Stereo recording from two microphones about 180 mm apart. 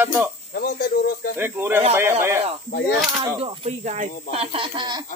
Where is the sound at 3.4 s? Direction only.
35° right (ahead or behind).